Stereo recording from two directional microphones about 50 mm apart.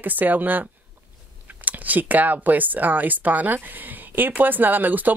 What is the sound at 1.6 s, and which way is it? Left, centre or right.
Speech, right.